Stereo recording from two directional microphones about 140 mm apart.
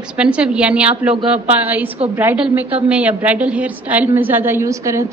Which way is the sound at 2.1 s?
10° right (ahead or behind).